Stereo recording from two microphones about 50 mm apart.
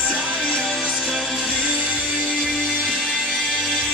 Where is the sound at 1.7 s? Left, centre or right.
Right.